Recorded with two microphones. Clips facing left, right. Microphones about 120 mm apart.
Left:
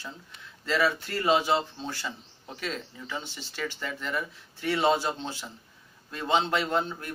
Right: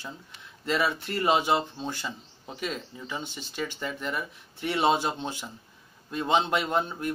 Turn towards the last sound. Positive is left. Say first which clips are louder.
# right 1 dB
turn(degrees=-15)  # may be behind; listen again after turning